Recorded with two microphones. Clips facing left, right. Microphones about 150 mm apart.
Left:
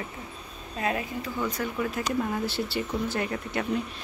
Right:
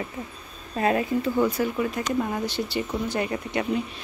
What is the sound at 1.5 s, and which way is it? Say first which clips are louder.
Speech: right 4 dB; 5° right (ahead or behind).